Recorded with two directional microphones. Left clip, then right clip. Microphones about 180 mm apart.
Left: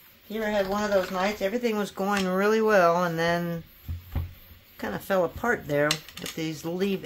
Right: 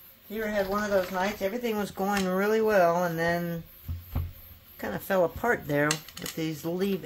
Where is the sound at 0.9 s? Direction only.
20° left (ahead or behind).